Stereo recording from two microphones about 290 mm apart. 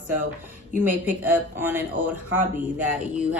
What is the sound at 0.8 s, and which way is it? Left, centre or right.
Speech, centre.